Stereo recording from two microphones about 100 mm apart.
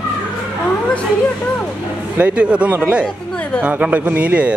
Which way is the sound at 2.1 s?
15° right (ahead or behind).